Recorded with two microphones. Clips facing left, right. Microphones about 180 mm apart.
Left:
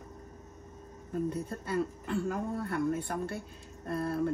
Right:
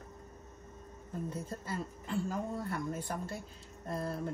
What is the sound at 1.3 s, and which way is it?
Speech, 60° left (ahead or behind).